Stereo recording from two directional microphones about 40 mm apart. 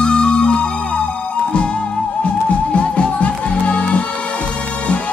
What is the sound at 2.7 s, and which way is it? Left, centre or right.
Music, left.